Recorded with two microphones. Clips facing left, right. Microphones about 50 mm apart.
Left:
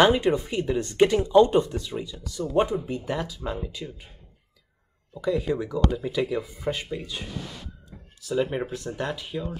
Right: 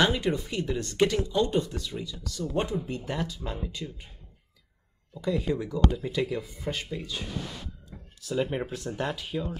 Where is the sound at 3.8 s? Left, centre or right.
Centre.